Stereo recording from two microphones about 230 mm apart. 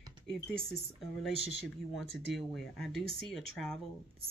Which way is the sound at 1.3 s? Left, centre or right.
Left.